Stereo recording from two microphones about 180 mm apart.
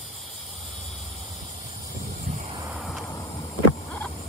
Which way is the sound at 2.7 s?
5° right (ahead or behind).